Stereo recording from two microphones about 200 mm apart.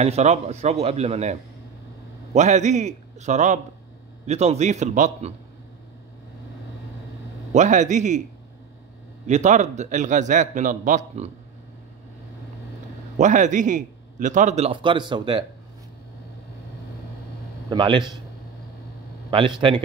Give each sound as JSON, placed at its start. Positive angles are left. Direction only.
{"t": 0.0, "sound": "a man's voice", "side_deg": -35}
{"t": 7.5, "sound": "a man's voice", "side_deg": -35}
{"t": 9.2, "sound": "a man's voice", "side_deg": -35}
{"t": 13.2, "sound": "a man's voice", "side_deg": -40}
{"t": 17.6, "sound": "a man's voice", "side_deg": -25}
{"t": 19.3, "sound": "a man's voice", "side_deg": -25}